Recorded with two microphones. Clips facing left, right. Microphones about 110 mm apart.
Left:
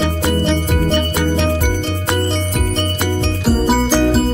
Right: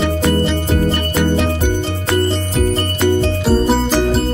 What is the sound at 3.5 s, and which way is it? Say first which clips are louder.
Music: left 1 dB; 5° left (ahead or behind).